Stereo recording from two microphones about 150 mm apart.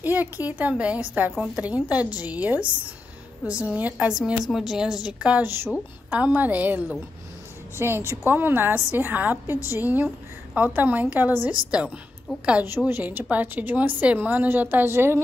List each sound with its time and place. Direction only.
0.0 s a woman's voice: 10° right (ahead or behind)